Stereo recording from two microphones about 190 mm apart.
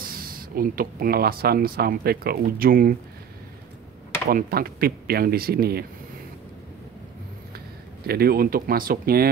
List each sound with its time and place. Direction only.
0.0 s speech: 50° right (ahead or behind)
4.3 s speech: 50° right (ahead or behind)
8.1 s speech: 55° right (ahead or behind)